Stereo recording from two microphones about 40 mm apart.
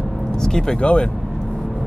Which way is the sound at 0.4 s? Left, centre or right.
Centre.